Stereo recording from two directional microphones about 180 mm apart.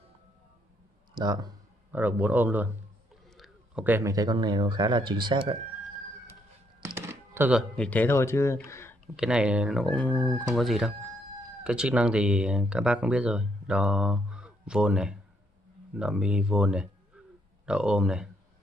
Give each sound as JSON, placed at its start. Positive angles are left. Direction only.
{"t": 1.1, "sound": "speech", "side_deg": -25}
{"t": 1.9, "sound": "speech", "side_deg": -10}
{"t": 7.0, "sound": "music", "side_deg": -10}
{"t": 7.7, "sound": "speech", "side_deg": 5}
{"t": 9.0, "sound": "speech", "side_deg": -5}